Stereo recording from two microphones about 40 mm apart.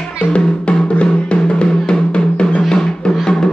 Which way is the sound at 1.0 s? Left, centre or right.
Left.